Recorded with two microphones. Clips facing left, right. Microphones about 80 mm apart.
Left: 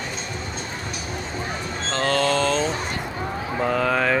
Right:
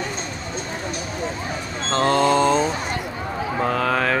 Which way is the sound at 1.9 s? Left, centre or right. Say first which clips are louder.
Right 4 dB; right.